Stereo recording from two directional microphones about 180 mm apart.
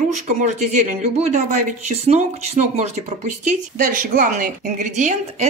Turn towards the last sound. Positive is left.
turn(degrees=-40)  # may be behind; listen again after turning